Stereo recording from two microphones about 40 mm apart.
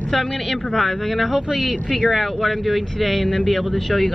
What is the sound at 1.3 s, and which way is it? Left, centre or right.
Speech, centre.